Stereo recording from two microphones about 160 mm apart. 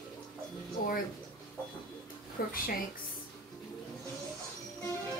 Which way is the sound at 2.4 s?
70° left (ahead or behind).